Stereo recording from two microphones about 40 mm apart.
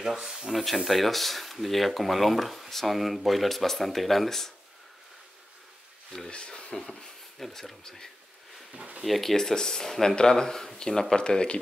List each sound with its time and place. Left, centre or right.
0.0 s speech: centre
6.3 s speech: left; by 7.7 s centre
9.0 s speech: centre; by 11.5 s left